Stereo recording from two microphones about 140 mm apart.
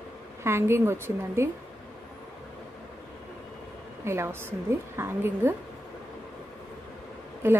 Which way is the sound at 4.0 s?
15° right (ahead or behind).